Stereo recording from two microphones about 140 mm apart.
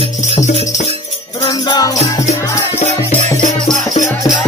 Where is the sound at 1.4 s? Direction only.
30° left (ahead or behind).